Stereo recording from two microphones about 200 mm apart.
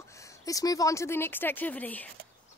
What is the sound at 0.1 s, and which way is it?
Speech, 15° left (ahead or behind).